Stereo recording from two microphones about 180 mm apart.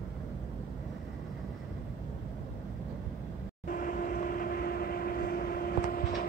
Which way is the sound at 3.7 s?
50° left (ahead or behind).